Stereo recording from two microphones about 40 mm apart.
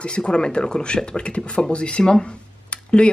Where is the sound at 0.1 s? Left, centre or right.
Left.